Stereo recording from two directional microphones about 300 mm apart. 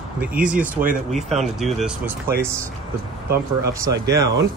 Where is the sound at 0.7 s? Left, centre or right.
Right.